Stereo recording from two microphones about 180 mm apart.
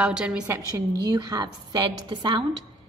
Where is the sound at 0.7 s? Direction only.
20° right (ahead or behind).